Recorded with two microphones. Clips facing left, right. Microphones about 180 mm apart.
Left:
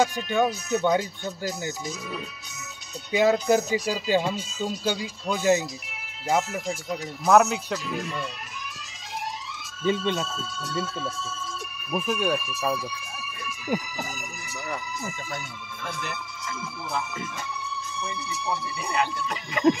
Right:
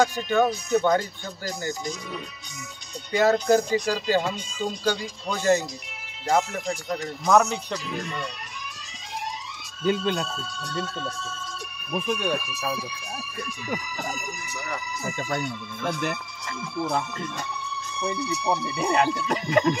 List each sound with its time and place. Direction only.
0.3 s speech: 10° left (ahead or behind)
9.8 s speech: centre (ahead or behind)
15.1 s speech: 65° right (ahead or behind)
15.4 s speech: centre (ahead or behind)
18.1 s speech: centre (ahead or behind)
18.8 s music: 35° right (ahead or behind)